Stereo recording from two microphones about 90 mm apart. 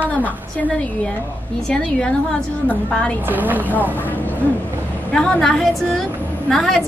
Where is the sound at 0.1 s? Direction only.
15° left (ahead or behind).